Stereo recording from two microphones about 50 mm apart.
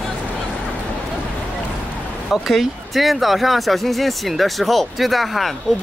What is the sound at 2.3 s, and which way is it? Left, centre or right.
Speech, centre.